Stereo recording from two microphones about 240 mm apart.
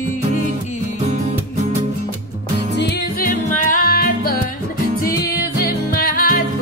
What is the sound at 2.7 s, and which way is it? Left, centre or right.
Music, left.